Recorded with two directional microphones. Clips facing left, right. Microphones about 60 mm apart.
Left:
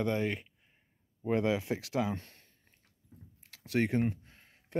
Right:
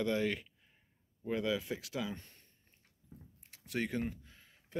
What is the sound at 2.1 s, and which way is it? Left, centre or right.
Speech, left.